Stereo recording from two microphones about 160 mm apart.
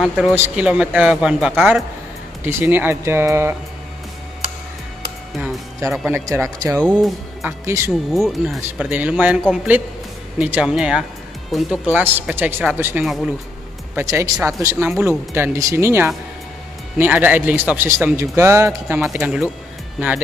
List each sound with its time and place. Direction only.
0.0 s a man's voice: 5° right (ahead or behind)
5.3 s music: centre (ahead or behind)
5.9 s a man's voice: 10° right (ahead or behind)
6.9 s speech: centre (ahead or behind)
7.4 s a man's voice: 15° right (ahead or behind)
7.9 s a man's voice: centre (ahead or behind)
10.4 s a man's voice: 5° right (ahead or behind)
13.9 s a man's voice: 20° right (ahead or behind)